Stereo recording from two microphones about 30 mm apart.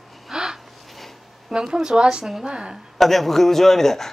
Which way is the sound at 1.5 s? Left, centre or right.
Right.